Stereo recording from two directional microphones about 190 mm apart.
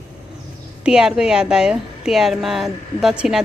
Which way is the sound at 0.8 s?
5° right (ahead or behind).